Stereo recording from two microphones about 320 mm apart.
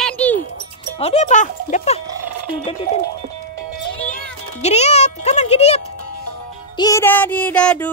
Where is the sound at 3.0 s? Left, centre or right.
Right.